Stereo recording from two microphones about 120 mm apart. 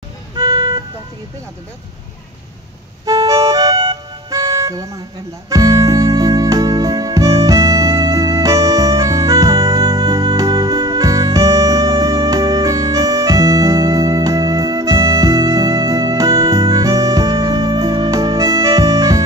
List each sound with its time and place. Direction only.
0.4 s music: 30° right (ahead or behind)
3.1 s music: 30° right (ahead or behind)